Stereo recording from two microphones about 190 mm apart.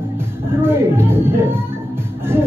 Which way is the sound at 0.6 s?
10° right (ahead or behind).